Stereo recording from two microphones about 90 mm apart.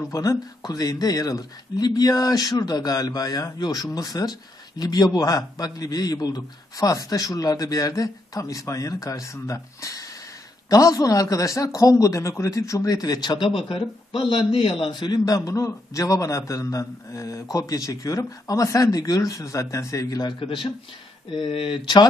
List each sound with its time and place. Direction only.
0.1 s a man's voice: 40° left (ahead or behind); by 14.2 s 85° left
14.8 s a man's voice: 55° left (ahead or behind)
21.4 s speech: 80° left